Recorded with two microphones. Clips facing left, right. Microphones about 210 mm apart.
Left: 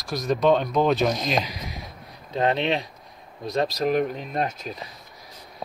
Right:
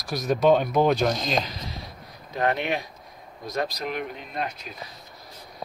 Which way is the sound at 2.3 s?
25° left (ahead or behind).